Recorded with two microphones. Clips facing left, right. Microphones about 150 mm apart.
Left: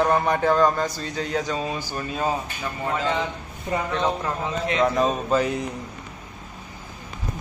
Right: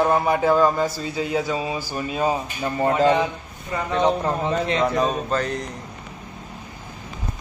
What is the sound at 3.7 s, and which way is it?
Speech, 25° left (ahead or behind).